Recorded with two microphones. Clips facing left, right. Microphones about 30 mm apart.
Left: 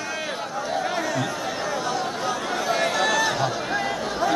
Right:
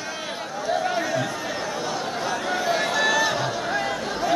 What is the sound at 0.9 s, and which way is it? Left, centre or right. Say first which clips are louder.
Chatter: right 1 dB; centre.